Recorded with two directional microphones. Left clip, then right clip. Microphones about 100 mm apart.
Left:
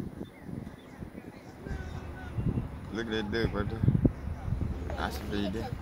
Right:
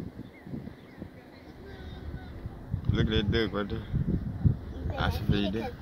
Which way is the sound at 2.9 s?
10° right (ahead or behind).